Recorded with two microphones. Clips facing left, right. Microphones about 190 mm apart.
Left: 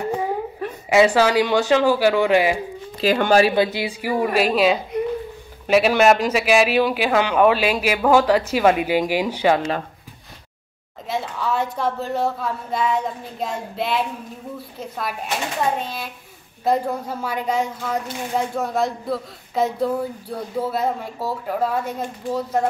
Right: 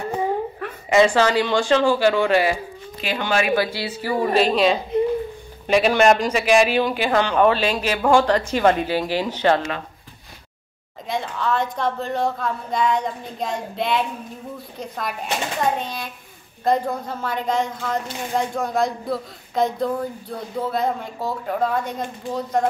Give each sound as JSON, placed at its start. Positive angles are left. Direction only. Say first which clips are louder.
{"t": 0.2, "sound": "speech", "louder": "right 1 dB", "side_deg": 10}
{"t": 3.0, "sound": "speech", "louder": "left 7 dB", "side_deg": 40}
{"t": 3.5, "sound": "a man's voice", "louder": "left 2 dB", "side_deg": 20}
{"t": 11.1, "sound": "a man's voice", "louder": "even", "side_deg": 5}